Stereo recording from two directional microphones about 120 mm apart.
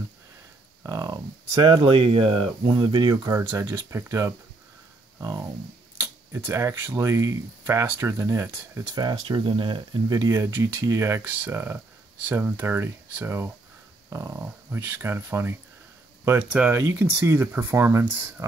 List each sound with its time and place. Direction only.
0.8 s a sound: 30° right (ahead or behind)
1.5 s speech: 40° right (ahead or behind)
2.0 s speech: 50° right (ahead or behind)
2.9 s speech: 35° right (ahead or behind)
3.9 s speech: 25° right (ahead or behind)
8.8 s speech: 35° right (ahead or behind); by 15.5 s 20° right (ahead or behind)
16.3 s speech: 10° right (ahead or behind)
16.8 s speech: 25° right (ahead or behind)